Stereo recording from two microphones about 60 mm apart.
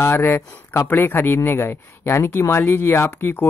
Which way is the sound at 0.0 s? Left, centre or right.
Left.